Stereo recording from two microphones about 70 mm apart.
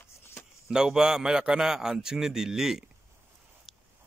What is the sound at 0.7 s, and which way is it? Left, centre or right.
A man's voice, centre.